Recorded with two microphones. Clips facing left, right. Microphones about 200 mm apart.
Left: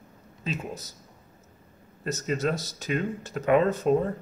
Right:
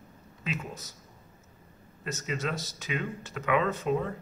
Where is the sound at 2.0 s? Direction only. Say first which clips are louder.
Left 6 dB; 40° left (ahead or behind).